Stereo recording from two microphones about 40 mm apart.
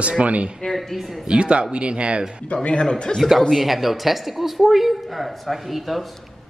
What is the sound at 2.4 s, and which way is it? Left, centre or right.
Speech, left.